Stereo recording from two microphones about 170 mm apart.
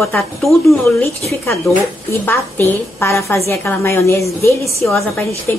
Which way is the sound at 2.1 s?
10° left (ahead or behind).